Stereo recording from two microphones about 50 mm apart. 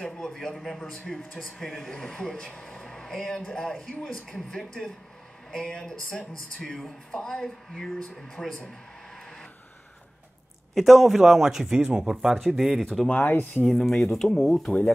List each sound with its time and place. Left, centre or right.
0.2 s speech: centre
1.3 s speech: centre
8.0 s speech: centre
10.7 s speech: centre
12.8 s speech: centre
13.1 s speech: left
13.7 s speech: centre